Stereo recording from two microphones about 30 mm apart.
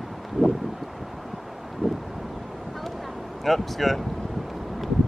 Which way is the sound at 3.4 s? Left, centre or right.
Centre.